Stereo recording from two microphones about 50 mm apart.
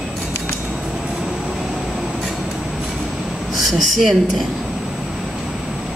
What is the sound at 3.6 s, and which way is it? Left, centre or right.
Speech, centre.